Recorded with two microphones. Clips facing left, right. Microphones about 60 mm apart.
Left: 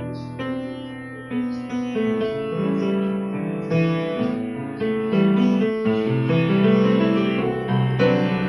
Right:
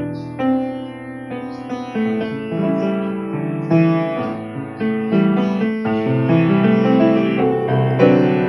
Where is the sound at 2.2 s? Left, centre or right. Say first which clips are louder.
Right 2 dB; centre.